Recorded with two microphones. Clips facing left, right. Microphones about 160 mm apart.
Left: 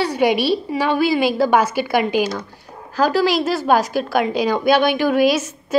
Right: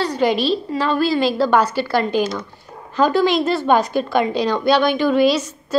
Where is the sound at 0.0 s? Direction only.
10° left (ahead or behind).